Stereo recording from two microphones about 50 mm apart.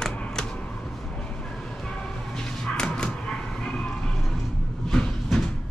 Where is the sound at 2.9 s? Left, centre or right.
Centre.